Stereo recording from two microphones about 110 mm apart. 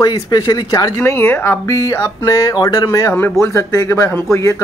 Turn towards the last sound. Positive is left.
turn(degrees=25)  # may be behind; listen again after turning